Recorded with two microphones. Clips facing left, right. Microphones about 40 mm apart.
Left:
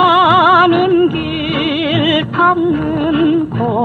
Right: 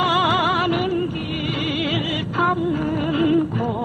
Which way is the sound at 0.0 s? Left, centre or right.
Left.